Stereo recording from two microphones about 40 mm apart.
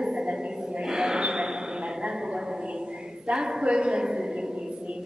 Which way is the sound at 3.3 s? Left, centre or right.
Right.